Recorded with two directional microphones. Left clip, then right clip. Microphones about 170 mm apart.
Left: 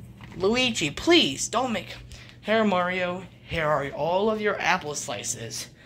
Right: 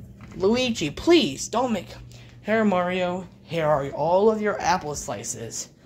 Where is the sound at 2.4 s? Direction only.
30° right (ahead or behind).